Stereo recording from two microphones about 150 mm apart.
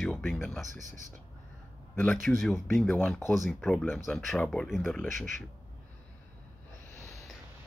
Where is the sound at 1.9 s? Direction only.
10° left (ahead or behind).